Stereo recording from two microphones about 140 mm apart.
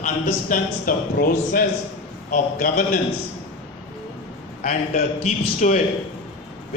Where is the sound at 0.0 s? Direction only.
75° left (ahead or behind).